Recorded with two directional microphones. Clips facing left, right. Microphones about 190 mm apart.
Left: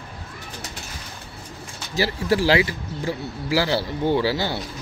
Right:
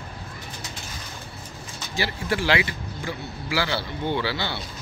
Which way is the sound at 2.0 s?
35° left (ahead or behind).